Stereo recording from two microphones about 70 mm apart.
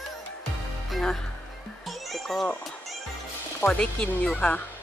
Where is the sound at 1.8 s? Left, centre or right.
Centre.